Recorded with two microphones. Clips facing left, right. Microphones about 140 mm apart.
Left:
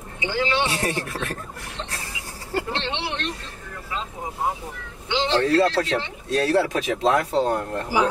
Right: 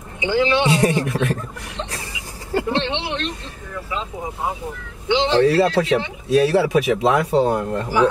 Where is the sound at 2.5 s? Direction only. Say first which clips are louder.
Right 6 dB; 20° right (ahead or behind).